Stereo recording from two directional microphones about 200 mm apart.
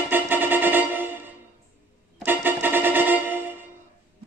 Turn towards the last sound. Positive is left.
turn(degrees=-10)  # may be behind; listen again after turning